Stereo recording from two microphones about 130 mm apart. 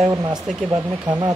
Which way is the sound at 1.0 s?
35° right (ahead or behind).